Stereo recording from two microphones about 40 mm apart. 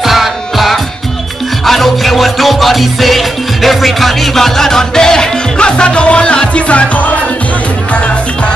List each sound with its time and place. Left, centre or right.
0.0 s music: centre; by 7.1 s left